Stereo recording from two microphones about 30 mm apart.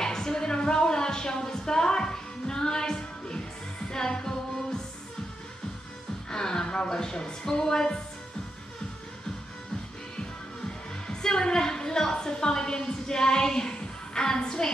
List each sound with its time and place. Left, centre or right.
0.0 s a sound: left
3.9 s music: left
6.3 s speech: left
11.1 s a woman's voice: left